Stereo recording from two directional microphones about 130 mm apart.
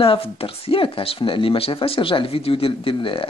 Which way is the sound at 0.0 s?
45° left (ahead or behind).